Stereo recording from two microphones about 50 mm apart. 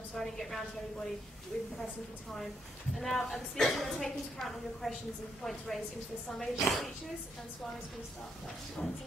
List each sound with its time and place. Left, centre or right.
0.1 s speech: centre
3.0 s a woman's voice: centre
8.8 s speech: centre